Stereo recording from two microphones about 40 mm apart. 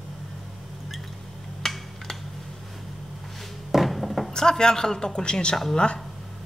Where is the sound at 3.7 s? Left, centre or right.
Centre.